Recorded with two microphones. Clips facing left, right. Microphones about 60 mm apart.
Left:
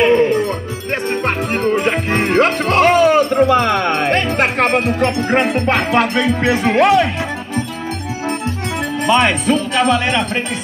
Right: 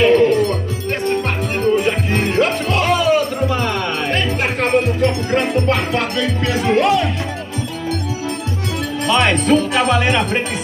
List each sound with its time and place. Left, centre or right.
0.0 s music: left
1.0 s music: left
9.0 s speech: centre
9.5 s music: centre